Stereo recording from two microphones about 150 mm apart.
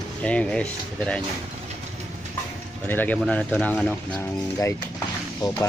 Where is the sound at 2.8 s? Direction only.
10° left (ahead or behind).